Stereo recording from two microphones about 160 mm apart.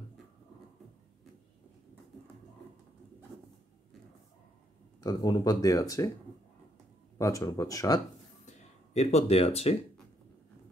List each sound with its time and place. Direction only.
5.0 s speech: 25° left (ahead or behind)
7.2 s speech: 20° left (ahead or behind)
8.5 s speech: 40° left (ahead or behind)